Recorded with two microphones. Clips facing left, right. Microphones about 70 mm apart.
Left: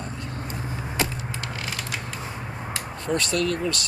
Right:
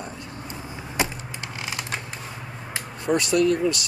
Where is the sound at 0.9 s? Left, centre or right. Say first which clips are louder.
Right 2 dB; centre.